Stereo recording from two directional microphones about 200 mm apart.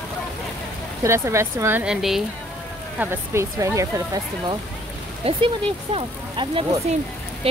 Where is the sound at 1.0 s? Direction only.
15° right (ahead or behind).